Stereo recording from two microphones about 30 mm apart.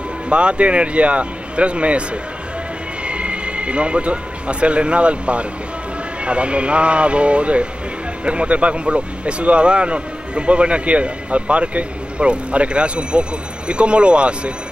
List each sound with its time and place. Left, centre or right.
0.3 s speech: right
3.1 s speech: right